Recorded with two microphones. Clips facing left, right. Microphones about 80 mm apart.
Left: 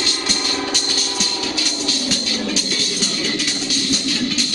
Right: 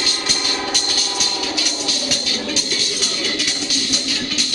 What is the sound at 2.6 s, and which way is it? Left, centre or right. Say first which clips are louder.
Music: left 1 dB; centre.